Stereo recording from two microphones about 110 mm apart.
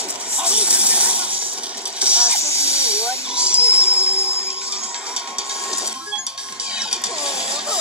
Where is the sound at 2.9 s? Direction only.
10° right (ahead or behind).